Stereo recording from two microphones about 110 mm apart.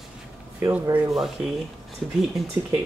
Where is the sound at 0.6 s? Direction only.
10° right (ahead or behind).